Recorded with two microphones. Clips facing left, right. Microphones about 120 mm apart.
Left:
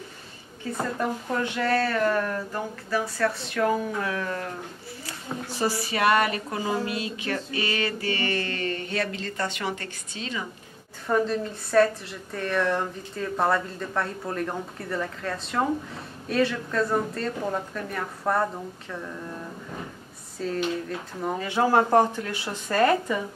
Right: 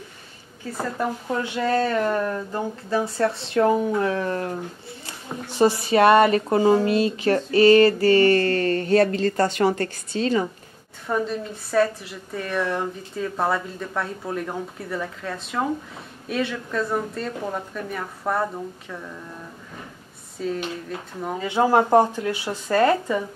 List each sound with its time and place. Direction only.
0.9 s speech: 10° right (ahead or behind); by 10.4 s 40° right (ahead or behind)
11.1 s a woman's voice: centre (ahead or behind)
20.3 s speech: 5° right (ahead or behind)
21.4 s speech: 20° right (ahead or behind)